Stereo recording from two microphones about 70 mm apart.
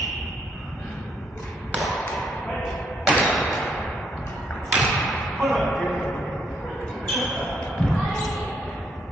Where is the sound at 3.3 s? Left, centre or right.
Centre.